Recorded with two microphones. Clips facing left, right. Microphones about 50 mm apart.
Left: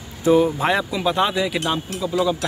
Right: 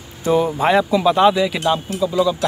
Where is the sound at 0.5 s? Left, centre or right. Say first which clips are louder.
Right 5 dB; centre.